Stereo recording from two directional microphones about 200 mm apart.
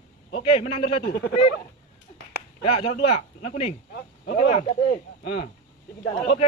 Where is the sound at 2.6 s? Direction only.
30° left (ahead or behind).